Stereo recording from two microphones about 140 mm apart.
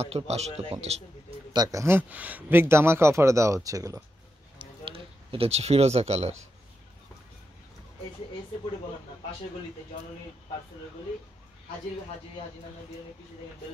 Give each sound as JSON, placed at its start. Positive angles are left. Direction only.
{"t": 0.0, "sound": "a man's voice", "side_deg": -50}
{"t": 1.5, "sound": "speech", "side_deg": -25}
{"t": 4.6, "sound": "a sound", "side_deg": -40}